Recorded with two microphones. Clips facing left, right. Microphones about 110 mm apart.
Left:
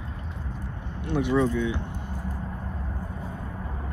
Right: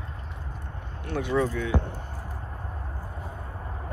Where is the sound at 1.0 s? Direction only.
20° left (ahead or behind).